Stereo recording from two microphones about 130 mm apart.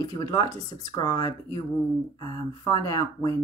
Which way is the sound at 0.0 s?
25° left (ahead or behind).